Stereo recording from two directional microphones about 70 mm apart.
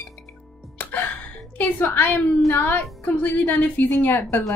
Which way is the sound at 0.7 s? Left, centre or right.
Left.